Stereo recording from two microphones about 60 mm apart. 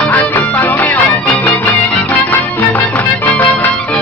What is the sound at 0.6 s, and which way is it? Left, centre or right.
Music, left.